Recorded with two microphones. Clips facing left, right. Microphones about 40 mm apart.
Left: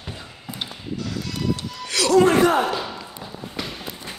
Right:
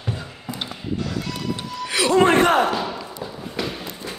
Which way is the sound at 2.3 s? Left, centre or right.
Right.